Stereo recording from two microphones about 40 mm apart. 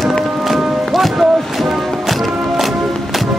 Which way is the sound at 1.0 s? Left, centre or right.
Centre.